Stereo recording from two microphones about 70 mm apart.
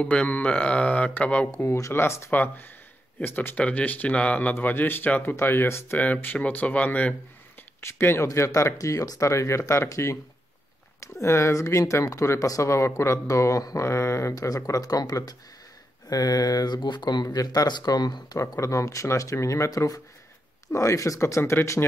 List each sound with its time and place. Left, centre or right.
0.0 s speech: centre
1.5 s speech: left
2.3 s speech: left
5.9 s speech: left
7.8 s speech: left
14.4 s speech: left
18.6 s speech: left
21.4 s speech: left